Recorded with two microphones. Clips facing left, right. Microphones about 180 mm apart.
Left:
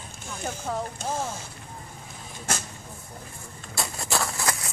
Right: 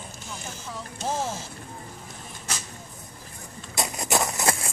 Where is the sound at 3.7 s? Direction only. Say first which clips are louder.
Right 3 dB; 20° right (ahead or behind).